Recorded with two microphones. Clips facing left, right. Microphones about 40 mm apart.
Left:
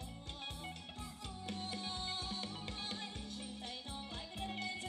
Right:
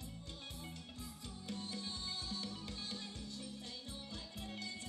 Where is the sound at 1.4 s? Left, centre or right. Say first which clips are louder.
Left 2 dB; left.